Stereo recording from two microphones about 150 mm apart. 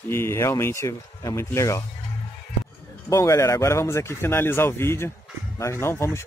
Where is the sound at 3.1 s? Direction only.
20° left (ahead or behind).